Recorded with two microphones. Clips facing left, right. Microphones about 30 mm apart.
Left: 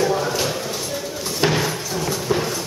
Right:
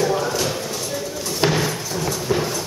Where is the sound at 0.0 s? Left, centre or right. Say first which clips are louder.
Even; centre.